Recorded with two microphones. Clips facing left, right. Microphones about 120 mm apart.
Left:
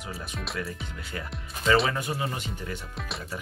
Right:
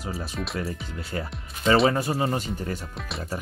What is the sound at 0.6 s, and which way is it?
Speech, 30° right (ahead or behind).